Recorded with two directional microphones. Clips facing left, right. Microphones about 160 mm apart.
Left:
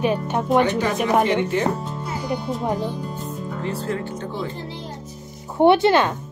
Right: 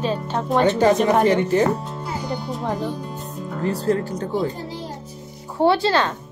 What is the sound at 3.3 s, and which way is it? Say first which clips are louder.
Music: even; centre (ahead or behind).